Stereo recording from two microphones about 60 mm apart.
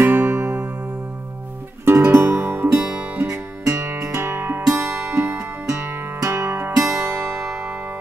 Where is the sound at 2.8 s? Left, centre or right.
Centre.